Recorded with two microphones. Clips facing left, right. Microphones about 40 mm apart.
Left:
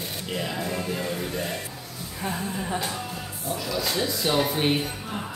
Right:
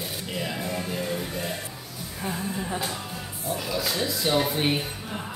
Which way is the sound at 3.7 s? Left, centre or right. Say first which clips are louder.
Left 2 dB; centre.